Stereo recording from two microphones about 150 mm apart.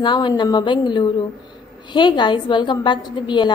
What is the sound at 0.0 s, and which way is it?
A woman's voice, 30° left (ahead or behind).